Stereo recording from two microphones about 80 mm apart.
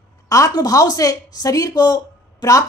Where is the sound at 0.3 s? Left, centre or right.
Left.